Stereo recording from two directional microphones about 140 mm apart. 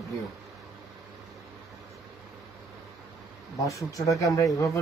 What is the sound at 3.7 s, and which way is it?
Speech, 20° left (ahead or behind).